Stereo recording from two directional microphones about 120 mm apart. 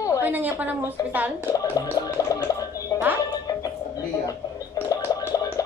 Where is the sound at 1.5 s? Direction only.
25° left (ahead or behind).